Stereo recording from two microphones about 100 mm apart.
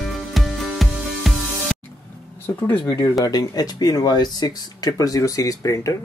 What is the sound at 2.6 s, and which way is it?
Speech, 20° left (ahead or behind).